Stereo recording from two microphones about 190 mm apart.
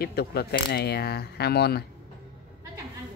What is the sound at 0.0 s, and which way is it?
Speech, 55° left (ahead or behind).